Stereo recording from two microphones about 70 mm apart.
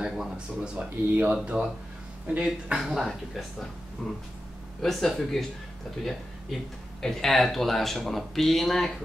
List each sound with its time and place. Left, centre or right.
0.0 s speech: centre
0.8 s speech: right
2.8 s speech: centre
7.0 s speech: centre